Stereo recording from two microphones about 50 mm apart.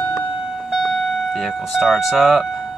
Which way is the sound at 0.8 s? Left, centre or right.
Centre.